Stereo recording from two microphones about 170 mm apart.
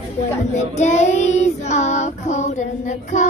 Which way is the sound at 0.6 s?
40° left (ahead or behind).